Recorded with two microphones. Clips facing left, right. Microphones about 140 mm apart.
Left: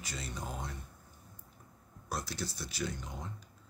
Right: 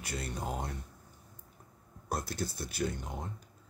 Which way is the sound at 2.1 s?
50° right (ahead or behind).